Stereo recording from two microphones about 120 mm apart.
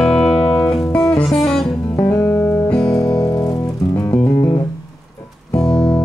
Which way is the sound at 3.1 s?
35° left (ahead or behind).